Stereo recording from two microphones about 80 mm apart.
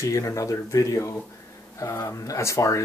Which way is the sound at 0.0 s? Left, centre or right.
Left.